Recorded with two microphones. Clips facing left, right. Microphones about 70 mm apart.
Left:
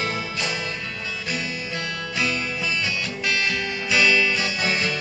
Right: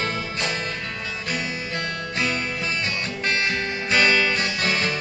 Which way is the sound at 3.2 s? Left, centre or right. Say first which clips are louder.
Right 1 dB; right.